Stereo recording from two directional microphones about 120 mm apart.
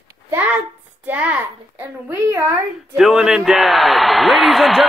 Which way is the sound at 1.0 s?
15° right (ahead or behind).